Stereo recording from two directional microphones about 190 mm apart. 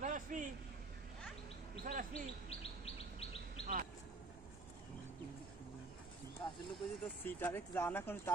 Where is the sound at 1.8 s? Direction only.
45° right (ahead or behind).